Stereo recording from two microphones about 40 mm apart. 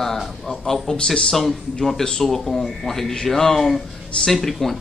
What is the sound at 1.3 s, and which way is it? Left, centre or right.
A man's voice, centre.